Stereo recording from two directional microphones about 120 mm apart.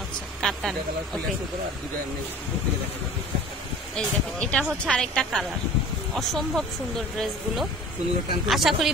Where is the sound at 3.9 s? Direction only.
10° left (ahead or behind).